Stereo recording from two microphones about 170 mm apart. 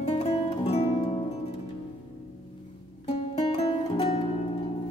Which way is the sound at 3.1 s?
35° left (ahead or behind).